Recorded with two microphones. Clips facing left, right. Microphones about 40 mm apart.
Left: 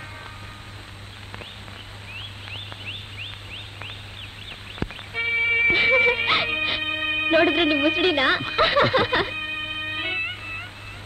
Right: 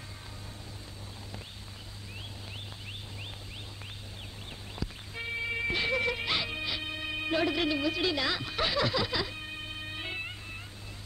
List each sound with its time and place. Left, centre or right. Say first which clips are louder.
2.1 s turkey: left 8 dB; left
4.7 s music: left 11 dB; left